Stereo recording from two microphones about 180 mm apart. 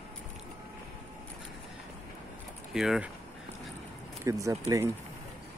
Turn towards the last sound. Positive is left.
turn(degrees=-20)  # may be behind; listen again after turning